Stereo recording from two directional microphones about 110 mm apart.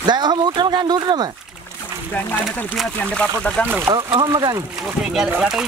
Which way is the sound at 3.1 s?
10° left (ahead or behind).